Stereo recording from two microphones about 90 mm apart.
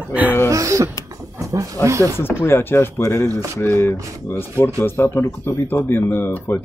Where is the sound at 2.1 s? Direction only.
25° left (ahead or behind).